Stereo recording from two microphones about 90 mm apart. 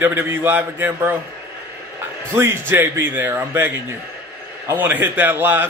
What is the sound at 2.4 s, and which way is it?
A man's voice, 25° right (ahead or behind).